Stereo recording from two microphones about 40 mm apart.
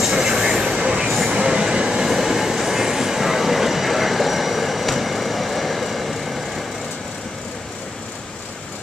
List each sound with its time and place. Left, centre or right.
0.0 s vehicle: centre
1.3 s train: centre